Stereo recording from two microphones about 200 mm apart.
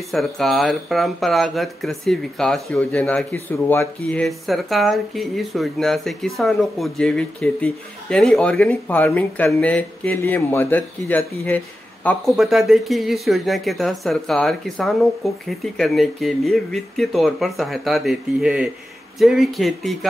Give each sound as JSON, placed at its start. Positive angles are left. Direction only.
{"t": 0.1, "sound": "speech", "side_deg": 0}